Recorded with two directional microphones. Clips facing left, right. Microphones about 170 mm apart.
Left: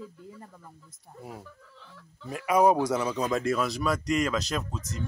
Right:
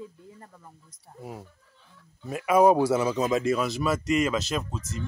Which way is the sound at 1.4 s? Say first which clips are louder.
Left 5 dB; 90° left.